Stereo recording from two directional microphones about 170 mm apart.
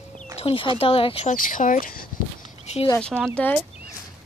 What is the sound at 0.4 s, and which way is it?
Speech, 35° left (ahead or behind).